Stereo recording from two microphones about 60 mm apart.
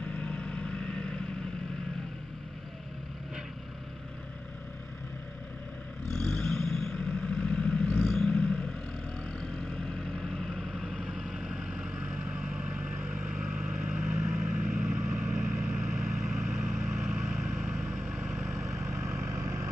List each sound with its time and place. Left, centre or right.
0.0 s vehicle: left
6.1 s vehicle: centre
8.0 s vehicle: centre
8.3 s vehicle: centre; by 15.0 s right
15.0 s vehicle: right
15.3 s vehicle: right
18.5 s vehicle: right